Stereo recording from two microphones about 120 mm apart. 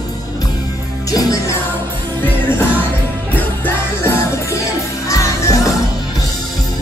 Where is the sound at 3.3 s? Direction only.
15° left (ahead or behind).